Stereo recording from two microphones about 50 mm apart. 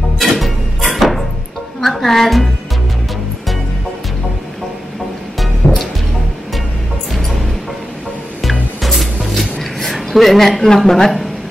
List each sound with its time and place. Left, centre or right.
0.2 s music: centre
1.8 s a woman's voice: centre
5.6 s music: left
7.1 s music: centre
8.4 s music: centre